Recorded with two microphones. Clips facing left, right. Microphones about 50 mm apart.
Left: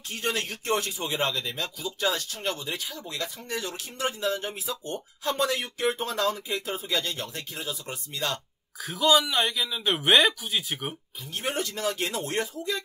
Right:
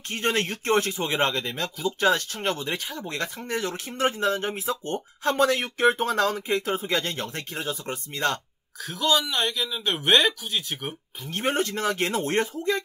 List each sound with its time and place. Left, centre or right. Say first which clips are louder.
0.1 s speech: right 4 dB; right
8.7 s speech: left 2 dB; centre
11.2 s speech: right 5 dB; right